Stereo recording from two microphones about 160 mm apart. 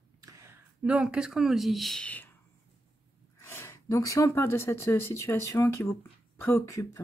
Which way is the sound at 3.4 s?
15° left (ahead or behind).